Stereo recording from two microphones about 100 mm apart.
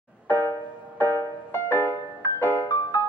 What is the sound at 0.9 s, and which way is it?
Music, 20° left (ahead or behind).